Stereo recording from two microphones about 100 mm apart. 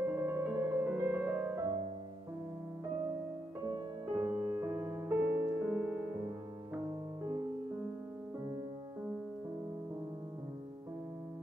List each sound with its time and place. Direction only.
0.1 s music: 25° right (ahead or behind)
3.6 s music: 35° right (ahead or behind)
5.6 s music: 10° right (ahead or behind)